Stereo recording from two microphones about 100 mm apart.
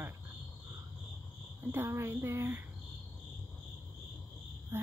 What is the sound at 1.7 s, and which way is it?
Speech, 25° right (ahead or behind).